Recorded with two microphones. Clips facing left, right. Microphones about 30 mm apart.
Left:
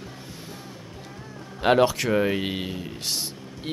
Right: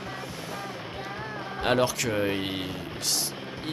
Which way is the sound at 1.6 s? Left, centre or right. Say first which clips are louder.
Left 5 dB; centre.